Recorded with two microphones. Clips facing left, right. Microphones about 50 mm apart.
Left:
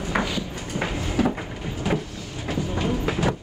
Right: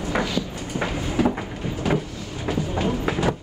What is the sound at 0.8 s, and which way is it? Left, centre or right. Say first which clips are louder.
Train: right 1 dB; centre.